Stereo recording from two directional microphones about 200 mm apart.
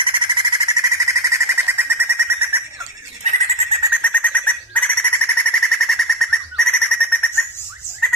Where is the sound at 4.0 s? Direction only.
5° left (ahead or behind).